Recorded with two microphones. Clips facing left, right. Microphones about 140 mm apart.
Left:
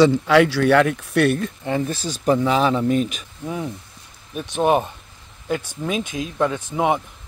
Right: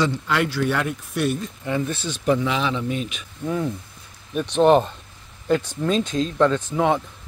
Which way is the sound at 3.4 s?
5° left (ahead or behind).